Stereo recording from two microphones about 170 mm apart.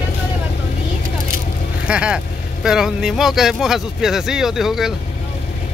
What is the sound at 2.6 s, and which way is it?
Speech, 5° right (ahead or behind).